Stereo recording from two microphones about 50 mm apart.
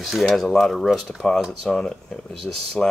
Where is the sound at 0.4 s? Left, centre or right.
Centre.